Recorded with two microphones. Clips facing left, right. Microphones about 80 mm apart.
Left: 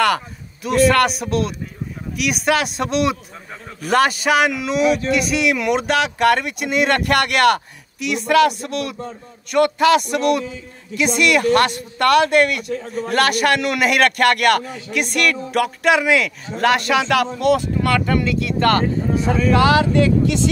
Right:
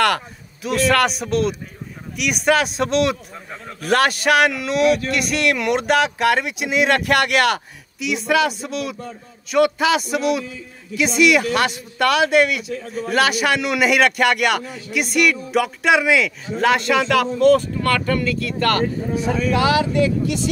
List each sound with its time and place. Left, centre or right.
0.0 s speech: centre
12.7 s a man's voice: left
13.1 s speech: centre; by 19.3 s left
19.3 s speech: left